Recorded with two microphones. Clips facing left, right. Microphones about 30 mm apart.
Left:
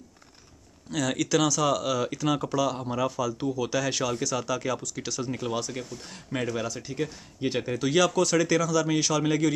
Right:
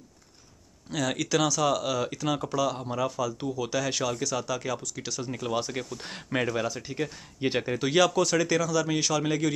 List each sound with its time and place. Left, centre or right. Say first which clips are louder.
0.8 s speech: left 1 dB; centre
5.6 s speech: right 2 dB; centre